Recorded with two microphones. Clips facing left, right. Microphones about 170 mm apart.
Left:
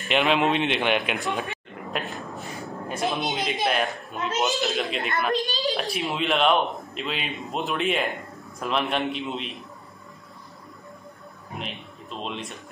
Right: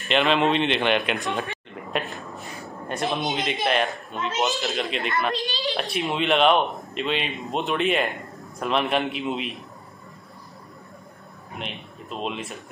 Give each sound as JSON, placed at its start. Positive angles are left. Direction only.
{"t": 0.1, "sound": "a man's voice", "side_deg": 10}
{"t": 1.3, "sound": "a sound", "side_deg": 0}
{"t": 2.6, "sound": "a man's voice", "side_deg": 0}
{"t": 5.5, "sound": "a woman's voice", "side_deg": 40}
{"t": 5.8, "sound": "a man's voice", "side_deg": 0}
{"t": 11.5, "sound": "speech", "side_deg": 0}